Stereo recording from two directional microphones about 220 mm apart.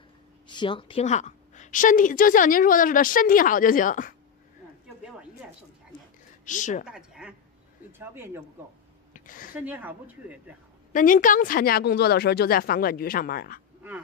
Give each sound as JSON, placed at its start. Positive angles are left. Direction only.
{"t": 0.5, "sound": "a woman's voice", "side_deg": 20}
{"t": 6.4, "sound": "speech", "side_deg": 35}
{"t": 6.8, "sound": "a woman's voice", "side_deg": -5}
{"t": 9.1, "sound": "a sound", "side_deg": 40}
{"t": 9.5, "sound": "a woman's voice", "side_deg": -10}
{"t": 10.9, "sound": "a woman's voice", "side_deg": 35}